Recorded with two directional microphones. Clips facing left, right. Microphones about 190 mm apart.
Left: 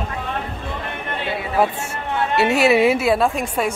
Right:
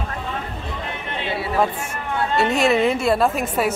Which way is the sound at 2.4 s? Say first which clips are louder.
Left 3 dB; 5° left (ahead or behind).